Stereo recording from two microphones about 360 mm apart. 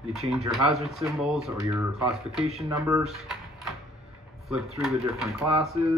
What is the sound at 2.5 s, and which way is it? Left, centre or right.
Speech, centre.